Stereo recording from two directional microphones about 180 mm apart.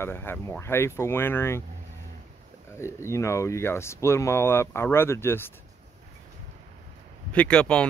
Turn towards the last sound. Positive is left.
turn(degrees=5)  # may be behind; listen again after turning